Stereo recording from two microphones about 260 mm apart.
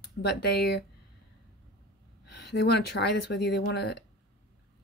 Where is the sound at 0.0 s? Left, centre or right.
Left.